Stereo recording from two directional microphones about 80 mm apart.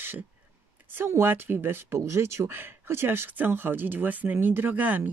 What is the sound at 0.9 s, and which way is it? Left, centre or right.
Speech, right.